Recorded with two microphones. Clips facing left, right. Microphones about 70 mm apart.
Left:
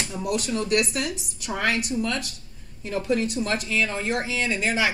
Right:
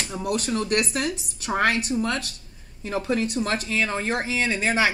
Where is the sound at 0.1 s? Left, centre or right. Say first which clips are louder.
Right 2 dB; right.